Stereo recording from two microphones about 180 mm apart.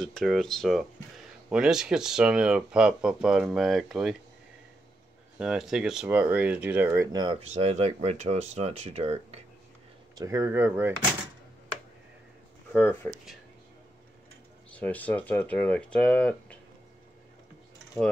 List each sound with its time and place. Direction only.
0.0 s speech: centre (ahead or behind)
5.4 s speech: 5° right (ahead or behind); by 9.4 s 35° right (ahead or behind)
10.1 s speech: 15° right (ahead or behind)
12.7 s speech: 10° left (ahead or behind)
14.7 s speech: 10° left (ahead or behind)